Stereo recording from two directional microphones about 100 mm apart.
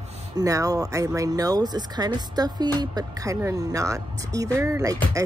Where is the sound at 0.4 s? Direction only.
35° right (ahead or behind).